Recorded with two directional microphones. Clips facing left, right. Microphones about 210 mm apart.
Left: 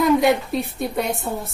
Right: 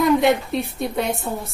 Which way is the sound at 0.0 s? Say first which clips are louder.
Even; centre (ahead or behind).